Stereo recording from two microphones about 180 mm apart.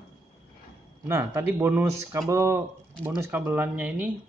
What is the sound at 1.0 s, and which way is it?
Speech, 15° right (ahead or behind).